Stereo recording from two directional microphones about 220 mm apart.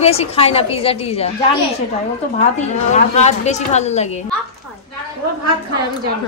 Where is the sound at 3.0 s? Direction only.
30° left (ahead or behind).